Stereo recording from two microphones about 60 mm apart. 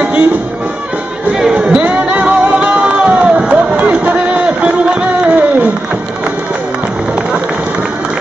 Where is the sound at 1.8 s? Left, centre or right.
Right.